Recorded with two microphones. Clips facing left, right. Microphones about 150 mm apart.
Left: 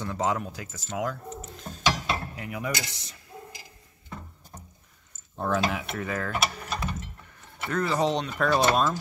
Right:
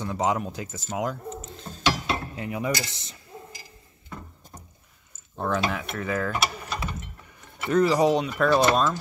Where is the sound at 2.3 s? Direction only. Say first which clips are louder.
Right 4 dB; 25° right (ahead or behind).